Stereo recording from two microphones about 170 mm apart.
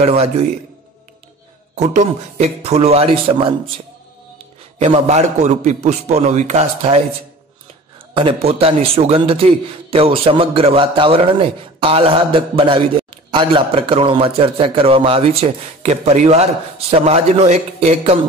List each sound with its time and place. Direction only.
0.0 s a man's voice: 40° right (ahead or behind)
1.8 s a man's voice: 40° right (ahead or behind)
4.7 s a man's voice: 40° right (ahead or behind)
8.2 s a man's voice: 35° right (ahead or behind)